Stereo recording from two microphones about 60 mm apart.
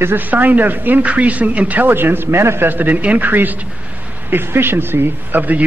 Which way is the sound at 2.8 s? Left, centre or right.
Right.